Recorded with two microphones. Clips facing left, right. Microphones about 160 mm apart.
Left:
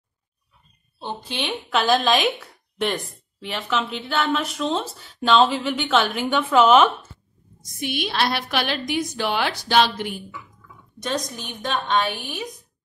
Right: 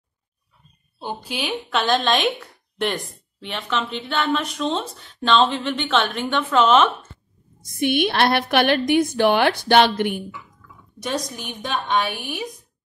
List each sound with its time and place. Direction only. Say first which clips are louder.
0.9 s speech: right 1 dB; 10° right (ahead or behind); by 7.1 s 10° left (ahead or behind)
7.6 s a woman's voice: right 8 dB; 60° right (ahead or behind)
11.0 s a woman's voice: even; 10° right (ahead or behind)